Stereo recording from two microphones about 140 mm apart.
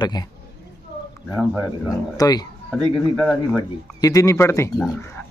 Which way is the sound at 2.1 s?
25° left (ahead or behind).